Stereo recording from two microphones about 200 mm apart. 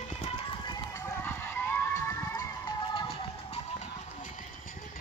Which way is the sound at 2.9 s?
30° left (ahead or behind).